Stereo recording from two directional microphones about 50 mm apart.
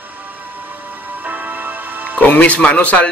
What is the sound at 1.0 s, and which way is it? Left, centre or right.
Music, right.